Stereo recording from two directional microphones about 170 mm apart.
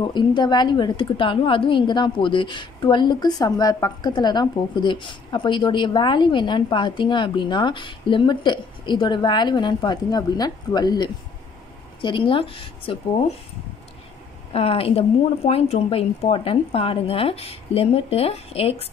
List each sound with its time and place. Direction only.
0.0 s a woman's voice: 25° left (ahead or behind)
14.5 s speech: 35° left (ahead or behind)